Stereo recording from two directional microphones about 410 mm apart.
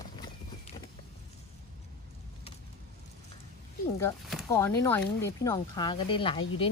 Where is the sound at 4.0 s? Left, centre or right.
Centre.